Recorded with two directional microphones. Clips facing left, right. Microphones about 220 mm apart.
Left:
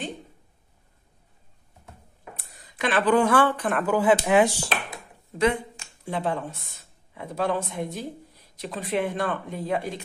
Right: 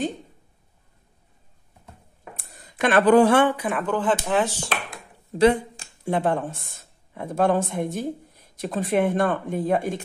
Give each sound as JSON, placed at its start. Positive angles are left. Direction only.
{"t": 2.3, "sound": "a sound", "side_deg": -50}
{"t": 3.4, "sound": "speech", "side_deg": -10}
{"t": 3.8, "sound": "speech", "side_deg": 10}
{"t": 5.4, "sound": "speech", "side_deg": -35}
{"t": 6.0, "sound": "speech", "side_deg": -50}